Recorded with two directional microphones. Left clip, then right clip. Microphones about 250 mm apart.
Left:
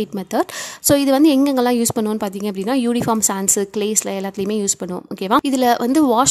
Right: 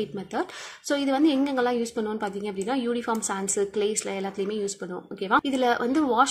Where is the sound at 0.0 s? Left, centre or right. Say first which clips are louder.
Left 9 dB; left.